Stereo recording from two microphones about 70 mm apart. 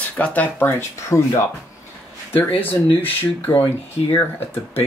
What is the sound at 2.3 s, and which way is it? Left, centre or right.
Speech, left.